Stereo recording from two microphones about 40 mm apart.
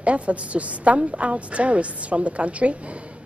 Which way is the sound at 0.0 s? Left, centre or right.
Right.